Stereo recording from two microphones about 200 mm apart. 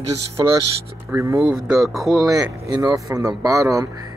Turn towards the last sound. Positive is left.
turn(degrees=-15)  # may be behind; listen again after turning